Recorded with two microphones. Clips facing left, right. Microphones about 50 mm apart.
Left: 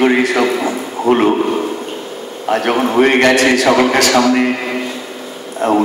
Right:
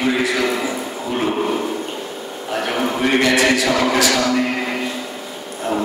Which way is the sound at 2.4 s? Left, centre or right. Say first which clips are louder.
Left 7 dB; left.